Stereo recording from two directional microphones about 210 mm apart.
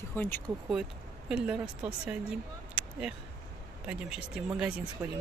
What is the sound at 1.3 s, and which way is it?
Speech, 5° right (ahead or behind).